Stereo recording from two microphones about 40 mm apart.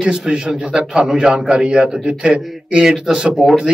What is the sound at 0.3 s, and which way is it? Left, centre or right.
A man's voice, centre.